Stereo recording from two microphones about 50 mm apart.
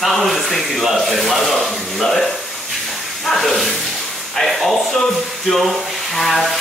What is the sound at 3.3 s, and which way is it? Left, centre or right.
Speech, centre.